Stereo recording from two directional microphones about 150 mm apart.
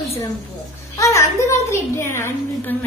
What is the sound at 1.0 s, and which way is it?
A woman's voice, 20° left (ahead or behind).